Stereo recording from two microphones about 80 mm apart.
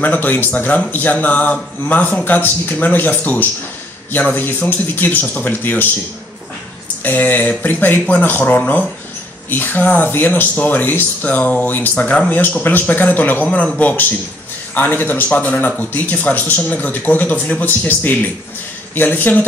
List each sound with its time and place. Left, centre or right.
0.0 s speech: left
7.0 s speech: left